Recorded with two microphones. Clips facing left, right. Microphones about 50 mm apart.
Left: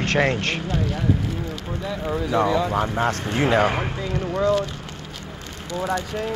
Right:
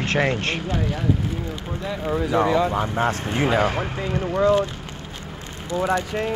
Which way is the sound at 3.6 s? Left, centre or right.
Centre.